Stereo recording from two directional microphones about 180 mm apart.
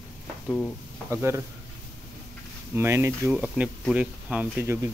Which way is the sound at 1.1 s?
15° right (ahead or behind).